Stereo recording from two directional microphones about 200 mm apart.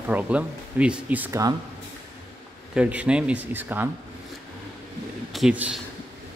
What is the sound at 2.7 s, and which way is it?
Speech, 5° right (ahead or behind).